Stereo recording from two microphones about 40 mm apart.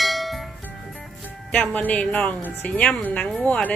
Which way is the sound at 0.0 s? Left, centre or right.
Centre.